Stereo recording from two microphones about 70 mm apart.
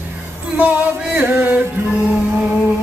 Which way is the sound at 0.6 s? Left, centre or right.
Centre.